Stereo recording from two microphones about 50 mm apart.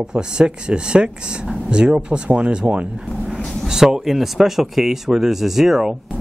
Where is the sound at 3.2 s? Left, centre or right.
Centre.